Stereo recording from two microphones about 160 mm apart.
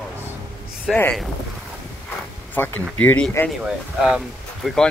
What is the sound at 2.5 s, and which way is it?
Speech, 10° left (ahead or behind).